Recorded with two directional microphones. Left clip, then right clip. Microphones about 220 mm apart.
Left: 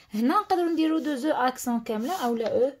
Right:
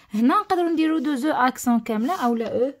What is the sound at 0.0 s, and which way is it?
Speech, 30° right (ahead or behind).